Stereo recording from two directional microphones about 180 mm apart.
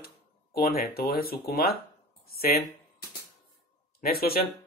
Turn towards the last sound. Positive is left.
turn(degrees=55)  # may be behind; listen again after turning